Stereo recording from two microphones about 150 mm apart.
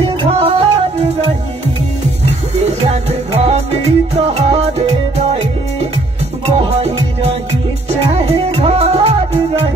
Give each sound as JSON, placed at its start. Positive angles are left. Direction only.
{"t": 0.2, "sound": "music", "side_deg": -40}
{"t": 2.9, "sound": "music", "side_deg": -45}